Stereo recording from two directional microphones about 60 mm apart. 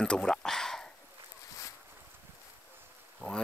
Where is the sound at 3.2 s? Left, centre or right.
Centre.